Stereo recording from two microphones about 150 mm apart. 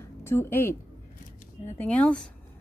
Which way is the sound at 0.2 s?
15° left (ahead or behind).